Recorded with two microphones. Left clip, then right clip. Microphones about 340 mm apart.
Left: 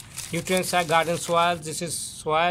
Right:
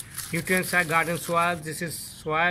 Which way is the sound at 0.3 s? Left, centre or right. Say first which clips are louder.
Left 1 dB; centre.